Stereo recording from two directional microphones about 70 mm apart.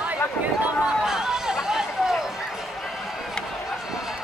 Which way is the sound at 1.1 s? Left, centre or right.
Centre.